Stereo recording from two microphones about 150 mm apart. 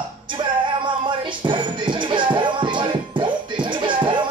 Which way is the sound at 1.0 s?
30° right (ahead or behind).